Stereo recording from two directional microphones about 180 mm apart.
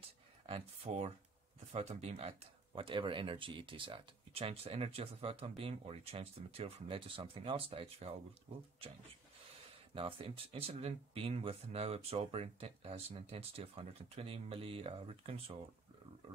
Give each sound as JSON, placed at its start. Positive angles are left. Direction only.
{"t": 0.5, "sound": "speech", "side_deg": -35}
{"t": 9.9, "sound": "speech", "side_deg": -30}